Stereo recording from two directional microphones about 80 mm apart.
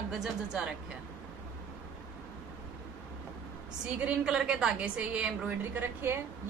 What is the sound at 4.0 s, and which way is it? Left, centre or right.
A woman's voice, centre.